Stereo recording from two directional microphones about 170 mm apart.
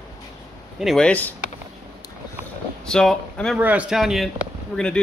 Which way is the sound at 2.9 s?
5° left (ahead or behind).